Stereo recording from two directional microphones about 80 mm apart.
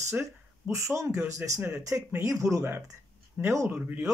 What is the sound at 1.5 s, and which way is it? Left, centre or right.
Speech, right.